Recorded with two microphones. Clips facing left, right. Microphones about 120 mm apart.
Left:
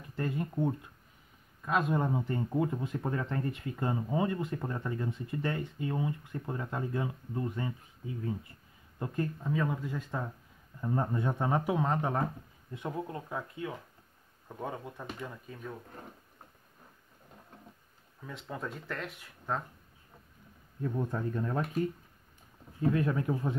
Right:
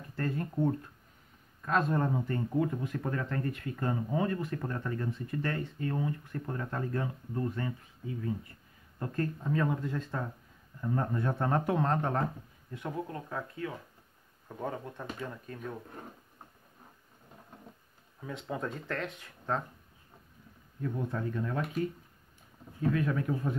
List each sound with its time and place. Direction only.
0.1 s speech: 15° left (ahead or behind)
9.0 s speech: 15° left (ahead or behind)
9.4 s speech: centre (ahead or behind)
12.7 s speech: 15° left (ahead or behind)
14.6 s speech: 5° left (ahead or behind)
18.2 s speech: centre (ahead or behind)
20.8 s speech: 30° left (ahead or behind)
22.8 s speech: 30° left (ahead or behind)